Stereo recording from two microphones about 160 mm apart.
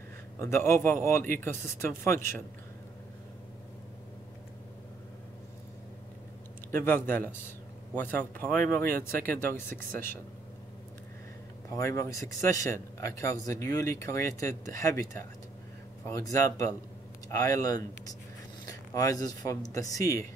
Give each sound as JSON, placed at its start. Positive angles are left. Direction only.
{"t": 0.4, "sound": "speech", "side_deg": 15}
{"t": 6.7, "sound": "speech", "side_deg": 15}
{"t": 11.7, "sound": "speech", "side_deg": 15}